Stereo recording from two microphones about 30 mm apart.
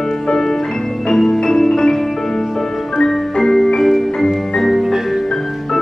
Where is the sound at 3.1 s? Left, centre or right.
Centre.